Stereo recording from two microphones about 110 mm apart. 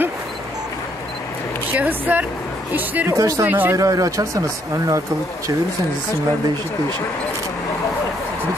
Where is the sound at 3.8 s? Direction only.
30° right (ahead or behind).